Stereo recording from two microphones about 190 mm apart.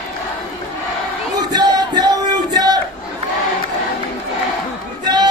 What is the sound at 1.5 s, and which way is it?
Music, 20° right (ahead or behind).